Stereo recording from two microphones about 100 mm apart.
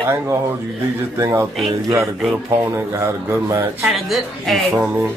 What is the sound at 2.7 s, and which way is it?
Speech, 30° right (ahead or behind).